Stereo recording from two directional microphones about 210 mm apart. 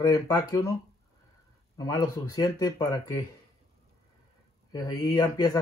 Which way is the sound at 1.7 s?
15° left (ahead or behind).